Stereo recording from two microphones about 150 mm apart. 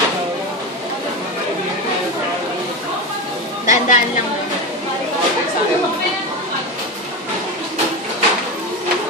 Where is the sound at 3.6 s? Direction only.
60° left (ahead or behind).